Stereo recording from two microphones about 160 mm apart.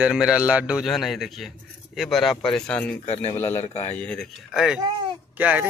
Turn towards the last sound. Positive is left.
turn(degrees=-10)  # may be behind; listen again after turning